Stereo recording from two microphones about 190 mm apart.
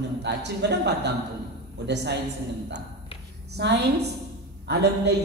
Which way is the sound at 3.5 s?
65° right (ahead or behind).